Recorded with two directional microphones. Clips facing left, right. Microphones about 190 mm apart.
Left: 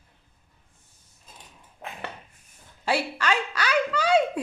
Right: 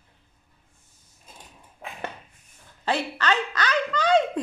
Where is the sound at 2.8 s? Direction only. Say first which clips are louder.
Even; 10° left (ahead or behind).